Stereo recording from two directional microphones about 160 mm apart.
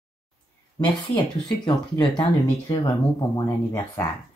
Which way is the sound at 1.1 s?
30° left (ahead or behind).